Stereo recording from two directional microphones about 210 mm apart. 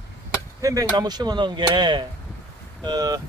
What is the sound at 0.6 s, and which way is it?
Speech, 20° right (ahead or behind).